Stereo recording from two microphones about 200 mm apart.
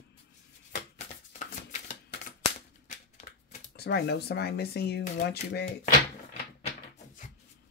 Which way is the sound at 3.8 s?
55° left (ahead or behind).